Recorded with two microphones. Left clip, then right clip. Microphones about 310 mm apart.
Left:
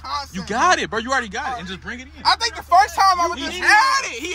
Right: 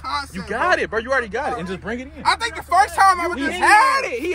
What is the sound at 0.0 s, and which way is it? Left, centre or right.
Speech, centre.